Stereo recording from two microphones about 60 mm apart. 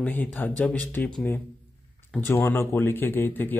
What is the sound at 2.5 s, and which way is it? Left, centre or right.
Speech, left.